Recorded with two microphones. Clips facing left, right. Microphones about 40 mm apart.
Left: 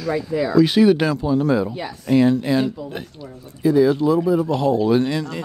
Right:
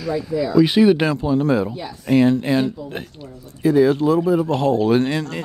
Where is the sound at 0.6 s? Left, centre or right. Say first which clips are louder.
Even; centre; by 4.1 s right.